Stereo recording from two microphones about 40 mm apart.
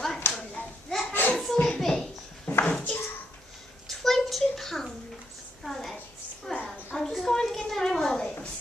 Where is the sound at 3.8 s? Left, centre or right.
Centre.